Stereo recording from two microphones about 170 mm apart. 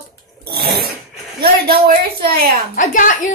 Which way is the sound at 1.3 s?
60° right (ahead or behind).